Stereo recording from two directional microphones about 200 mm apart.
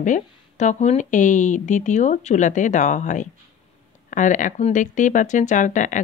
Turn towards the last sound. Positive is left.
turn(degrees=40)  # may be behind; listen again after turning